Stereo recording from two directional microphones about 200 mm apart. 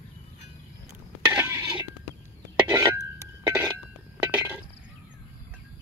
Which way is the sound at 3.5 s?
10° right (ahead or behind).